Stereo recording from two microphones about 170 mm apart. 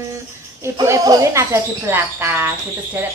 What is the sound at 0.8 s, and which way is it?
A woman's voice, 20° right (ahead or behind).